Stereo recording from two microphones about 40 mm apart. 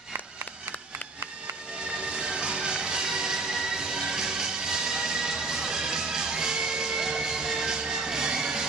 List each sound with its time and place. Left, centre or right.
2.0 s music: right